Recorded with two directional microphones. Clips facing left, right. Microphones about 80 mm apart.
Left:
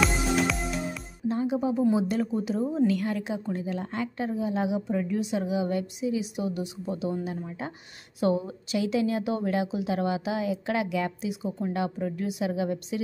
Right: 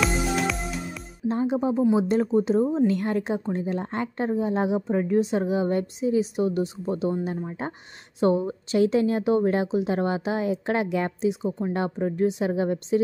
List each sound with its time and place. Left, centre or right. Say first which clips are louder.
0.0 s music: right 1 dB; centre
1.3 s a woman's voice: right 3 dB; right